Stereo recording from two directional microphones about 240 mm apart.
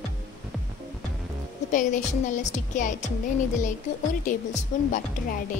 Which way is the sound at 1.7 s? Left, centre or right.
Left.